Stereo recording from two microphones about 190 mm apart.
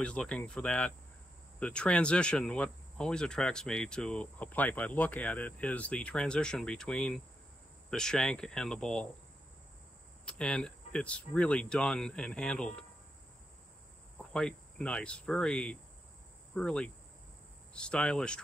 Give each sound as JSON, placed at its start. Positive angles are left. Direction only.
{"t": 0.0, "sound": "speech", "side_deg": 5}
{"t": 10.2, "sound": "speech", "side_deg": 5}
{"t": 14.1, "sound": "speech", "side_deg": 5}